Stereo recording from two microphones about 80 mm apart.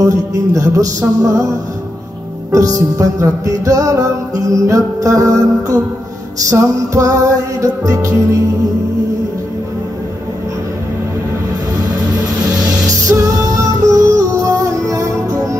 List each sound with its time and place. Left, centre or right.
0.0 s music: right
2.5 s music: right
12.8 s music: right